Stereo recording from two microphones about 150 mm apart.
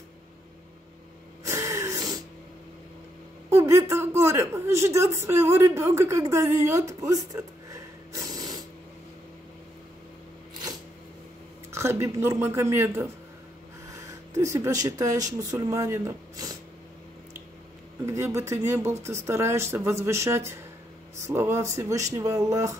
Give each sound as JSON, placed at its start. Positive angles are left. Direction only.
{"t": 1.4, "sound": "a sound", "side_deg": -20}
{"t": 3.4, "sound": "a man's voice", "side_deg": -15}
{"t": 11.7, "sound": "speech", "side_deg": -20}
{"t": 18.0, "sound": "speech", "side_deg": -20}